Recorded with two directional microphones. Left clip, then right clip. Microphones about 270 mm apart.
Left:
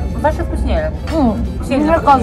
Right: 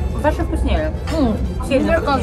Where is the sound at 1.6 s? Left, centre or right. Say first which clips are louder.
Left 3 dB; centre.